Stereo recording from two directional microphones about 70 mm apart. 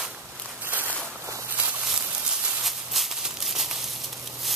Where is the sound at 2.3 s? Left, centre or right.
Centre.